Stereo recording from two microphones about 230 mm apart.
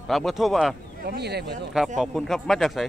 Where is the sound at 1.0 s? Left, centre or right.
Right.